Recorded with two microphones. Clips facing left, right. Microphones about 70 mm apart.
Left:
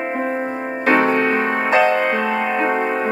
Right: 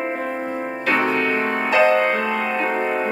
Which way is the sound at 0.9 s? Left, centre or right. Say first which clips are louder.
Left 4 dB; left.